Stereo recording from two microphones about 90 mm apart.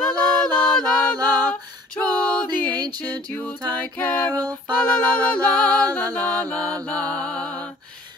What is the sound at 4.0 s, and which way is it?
Music, 20° left (ahead or behind).